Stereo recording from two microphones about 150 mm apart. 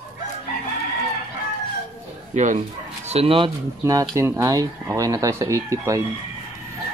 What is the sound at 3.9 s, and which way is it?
Speech, 20° right (ahead or behind).